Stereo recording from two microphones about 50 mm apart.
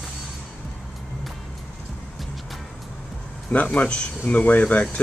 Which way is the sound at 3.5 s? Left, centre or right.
Left.